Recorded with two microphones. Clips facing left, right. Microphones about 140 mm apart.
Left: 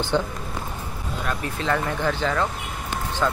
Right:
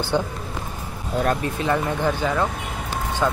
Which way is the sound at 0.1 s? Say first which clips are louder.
Right 1 dB; 15° right (ahead or behind).